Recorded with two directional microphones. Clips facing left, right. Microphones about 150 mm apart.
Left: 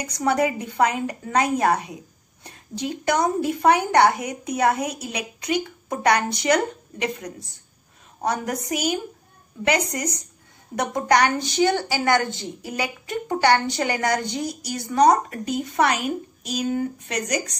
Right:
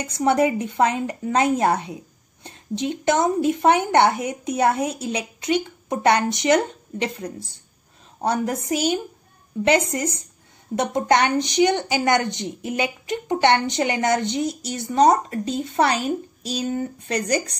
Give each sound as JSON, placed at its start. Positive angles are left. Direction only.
{"t": 0.0, "sound": "a woman's voice", "side_deg": -25}